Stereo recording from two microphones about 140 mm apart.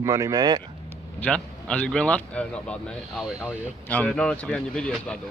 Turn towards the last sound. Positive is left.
turn(degrees=5)  # may be behind; listen again after turning